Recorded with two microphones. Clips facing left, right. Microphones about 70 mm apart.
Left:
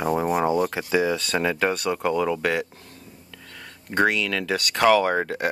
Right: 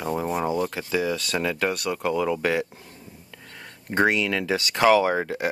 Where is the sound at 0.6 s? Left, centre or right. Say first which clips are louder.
Left 3 dB; centre.